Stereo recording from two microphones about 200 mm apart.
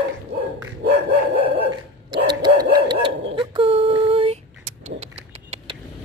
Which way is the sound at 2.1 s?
20° right (ahead or behind).